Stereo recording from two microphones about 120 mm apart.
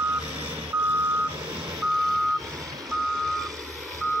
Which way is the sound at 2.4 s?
30° right (ahead or behind).